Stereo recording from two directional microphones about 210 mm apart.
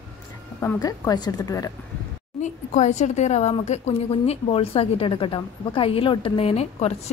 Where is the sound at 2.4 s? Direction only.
35° left (ahead or behind).